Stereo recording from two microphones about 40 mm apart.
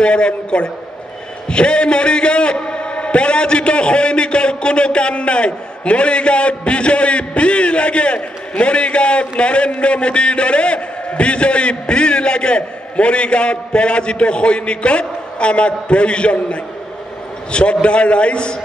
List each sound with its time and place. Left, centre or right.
0.0 s a man's voice: left